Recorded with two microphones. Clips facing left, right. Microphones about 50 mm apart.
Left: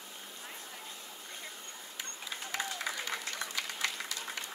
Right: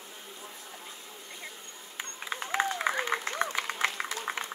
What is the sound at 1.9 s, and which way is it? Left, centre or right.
Applause, right.